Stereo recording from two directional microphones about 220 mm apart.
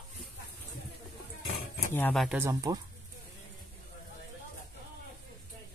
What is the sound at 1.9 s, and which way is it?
Speech, 5° left (ahead or behind).